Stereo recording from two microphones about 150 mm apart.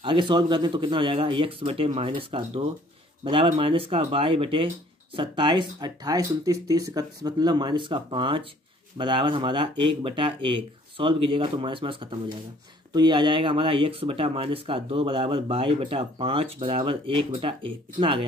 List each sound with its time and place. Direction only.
0.0 s speech: 35° right (ahead or behind)